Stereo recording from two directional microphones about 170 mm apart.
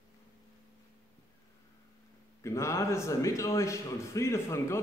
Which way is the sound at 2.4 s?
15° left (ahead or behind).